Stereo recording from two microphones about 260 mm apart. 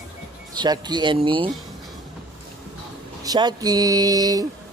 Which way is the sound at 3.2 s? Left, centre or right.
Centre.